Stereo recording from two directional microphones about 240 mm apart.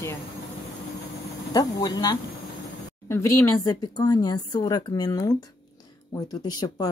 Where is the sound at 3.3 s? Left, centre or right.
Centre.